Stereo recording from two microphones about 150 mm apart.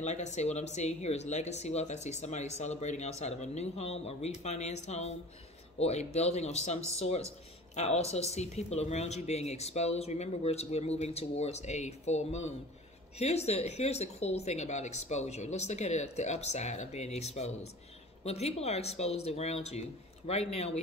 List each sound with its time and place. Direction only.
0.0 s speech: 50° left (ahead or behind)